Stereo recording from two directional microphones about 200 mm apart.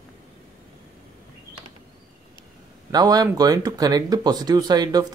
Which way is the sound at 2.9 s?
20° right (ahead or behind).